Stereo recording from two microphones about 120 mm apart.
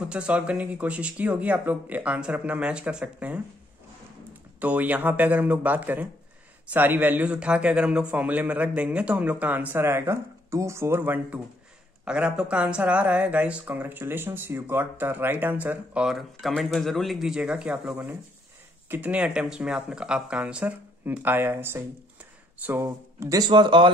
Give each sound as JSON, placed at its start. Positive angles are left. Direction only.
{"t": 0.0, "sound": "speech", "side_deg": -10}
{"t": 4.6, "sound": "a man's voice", "side_deg": -15}
{"t": 23.4, "sound": "speech", "side_deg": -40}